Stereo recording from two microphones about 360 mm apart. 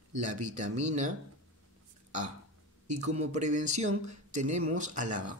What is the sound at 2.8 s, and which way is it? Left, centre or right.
Speech, centre.